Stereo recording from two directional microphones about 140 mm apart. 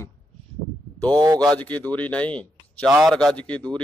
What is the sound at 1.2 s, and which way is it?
Speech, 30° right (ahead or behind).